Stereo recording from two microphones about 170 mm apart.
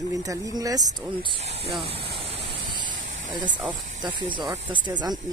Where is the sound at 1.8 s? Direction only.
35° right (ahead or behind).